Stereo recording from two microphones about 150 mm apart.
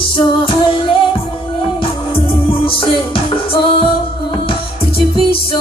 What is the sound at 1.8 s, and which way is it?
Music, 35° left (ahead or behind).